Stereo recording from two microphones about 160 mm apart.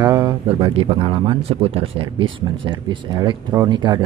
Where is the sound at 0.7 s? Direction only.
35° right (ahead or behind).